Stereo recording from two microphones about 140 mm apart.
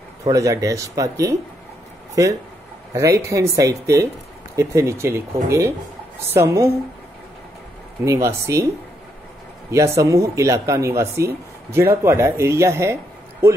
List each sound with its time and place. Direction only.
0.2 s speech: 25° right (ahead or behind)
2.9 s speech: 20° right (ahead or behind)
8.0 s speech: 20° right (ahead or behind)
9.7 s speech: 20° right (ahead or behind)